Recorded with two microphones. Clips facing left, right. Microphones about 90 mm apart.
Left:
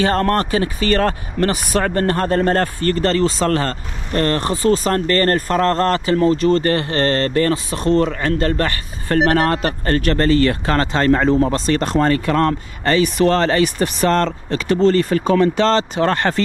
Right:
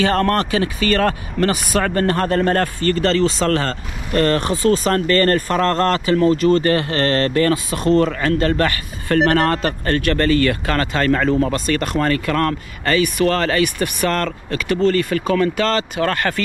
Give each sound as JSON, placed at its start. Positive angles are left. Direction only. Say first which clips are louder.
{"t": 0.0, "sound": "speech", "louder": "even", "side_deg": 35}
{"t": 5.1, "sound": "speech", "louder": "even", "side_deg": 35}